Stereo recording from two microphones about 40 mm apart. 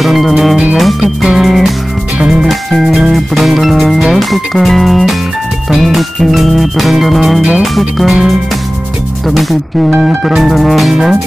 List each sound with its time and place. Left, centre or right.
0.0 s music: centre
2.1 s music: centre
2.4 s music: centre
9.3 s music: centre
9.8 s speech: centre
10.2 s music: centre